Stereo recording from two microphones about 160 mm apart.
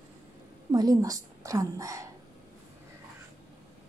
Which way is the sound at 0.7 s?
25° right (ahead or behind).